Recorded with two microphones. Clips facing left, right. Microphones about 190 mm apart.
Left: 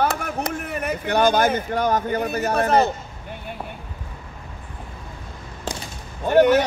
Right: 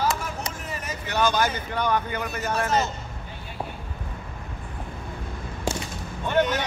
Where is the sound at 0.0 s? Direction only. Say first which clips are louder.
Left 4 dB; 60° left (ahead or behind); by 2.2 s 40° left (ahead or behind).